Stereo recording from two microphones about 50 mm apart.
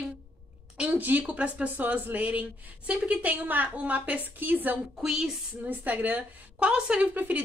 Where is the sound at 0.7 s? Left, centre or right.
Right.